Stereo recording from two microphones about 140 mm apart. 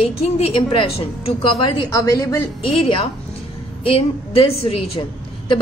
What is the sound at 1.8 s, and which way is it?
Speech, 25° left (ahead or behind).